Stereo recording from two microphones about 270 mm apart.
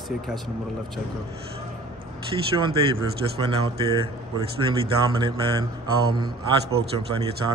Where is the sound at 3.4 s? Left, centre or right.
Right.